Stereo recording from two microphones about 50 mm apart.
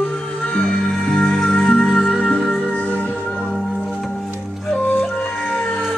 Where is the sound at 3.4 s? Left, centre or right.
Centre.